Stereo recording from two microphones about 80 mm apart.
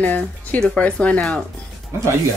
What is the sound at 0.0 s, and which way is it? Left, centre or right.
Speech, centre.